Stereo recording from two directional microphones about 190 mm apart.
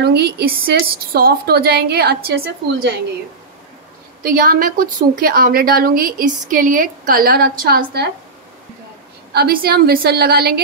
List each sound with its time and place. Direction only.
0.0 s a woman's voice: 60° right (ahead or behind)
4.2 s a woman's voice: 50° right (ahead or behind)
9.3 s a woman's voice: 55° right (ahead or behind)